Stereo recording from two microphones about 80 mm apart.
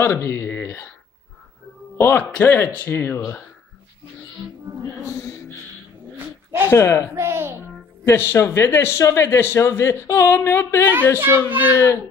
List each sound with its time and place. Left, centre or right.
0.0 s speech: left
2.0 s speech: left
5.0 s a man's voice: left
6.7 s a man's voice: left
7.2 s a child's voice: right
8.0 s a man's voice: left
11.2 s speech: right